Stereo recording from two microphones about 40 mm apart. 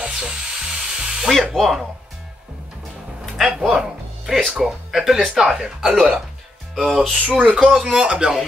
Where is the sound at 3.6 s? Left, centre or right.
Centre.